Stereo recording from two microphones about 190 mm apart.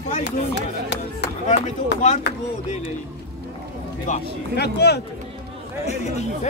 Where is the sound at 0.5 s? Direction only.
65° left (ahead or behind).